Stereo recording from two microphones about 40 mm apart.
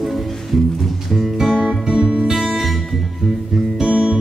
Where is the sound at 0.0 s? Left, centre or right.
Centre.